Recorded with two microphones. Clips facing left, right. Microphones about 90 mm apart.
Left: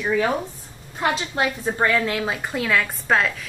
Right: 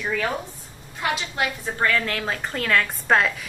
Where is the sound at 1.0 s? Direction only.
30° left (ahead or behind).